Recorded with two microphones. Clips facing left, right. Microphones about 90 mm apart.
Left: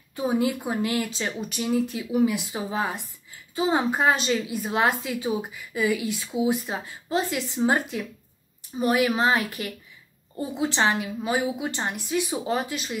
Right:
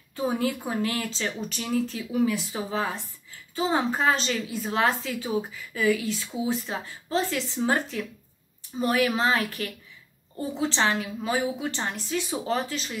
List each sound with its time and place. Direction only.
0.1 s a woman's voice: 15° left (ahead or behind)